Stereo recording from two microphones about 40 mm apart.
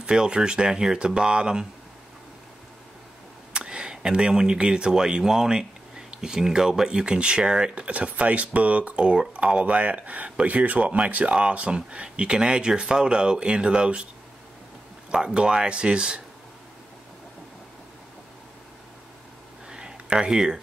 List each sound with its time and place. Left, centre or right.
0.0 s speech: right
3.5 s speech: right
7.7 s speech: right
15.0 s speech: centre
19.7 s a sound: right